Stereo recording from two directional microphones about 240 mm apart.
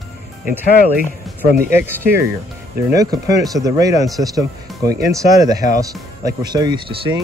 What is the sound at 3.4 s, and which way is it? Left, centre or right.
Speech, centre.